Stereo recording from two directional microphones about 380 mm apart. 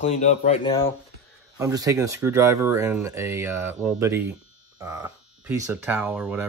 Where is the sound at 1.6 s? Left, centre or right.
Centre.